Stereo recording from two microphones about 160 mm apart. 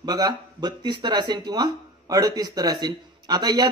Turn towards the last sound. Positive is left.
turn(degrees=-25)  # may be behind; listen again after turning